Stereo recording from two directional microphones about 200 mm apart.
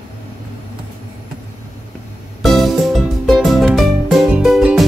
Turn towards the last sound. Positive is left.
turn(degrees=0)  # may be behind; listen again after turning